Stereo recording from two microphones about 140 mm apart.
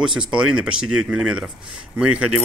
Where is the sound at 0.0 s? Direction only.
5° right (ahead or behind).